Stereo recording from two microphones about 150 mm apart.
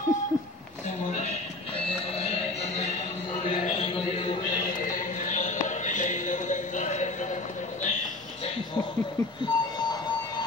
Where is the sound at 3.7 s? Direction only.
40° left (ahead or behind).